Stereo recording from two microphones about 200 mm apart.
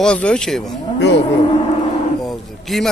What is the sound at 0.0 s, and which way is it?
Speech, 5° left (ahead or behind).